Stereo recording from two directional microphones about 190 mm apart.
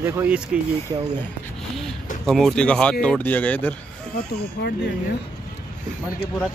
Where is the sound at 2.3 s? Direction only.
Centre (ahead or behind).